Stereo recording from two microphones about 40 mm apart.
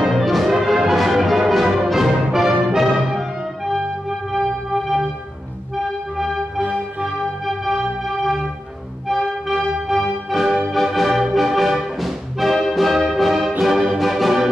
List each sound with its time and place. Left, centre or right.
0.0 s music: centre
4.3 s music: centre
6.6 s music: right
7.4 s music: centre
9.1 s music: centre